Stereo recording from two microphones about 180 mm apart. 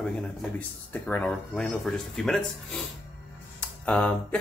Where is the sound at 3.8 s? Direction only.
5° left (ahead or behind).